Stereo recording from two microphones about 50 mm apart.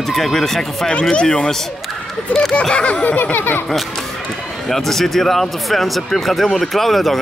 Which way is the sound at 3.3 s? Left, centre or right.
Left.